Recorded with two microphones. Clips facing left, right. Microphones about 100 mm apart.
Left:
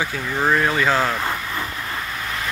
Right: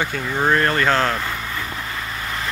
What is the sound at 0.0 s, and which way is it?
Speech, centre (ahead or behind).